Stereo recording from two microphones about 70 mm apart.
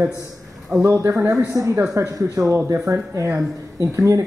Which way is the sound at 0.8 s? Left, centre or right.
Right.